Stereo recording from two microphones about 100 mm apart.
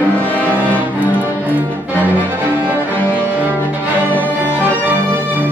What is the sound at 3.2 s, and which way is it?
Cello, 20° right (ahead or behind).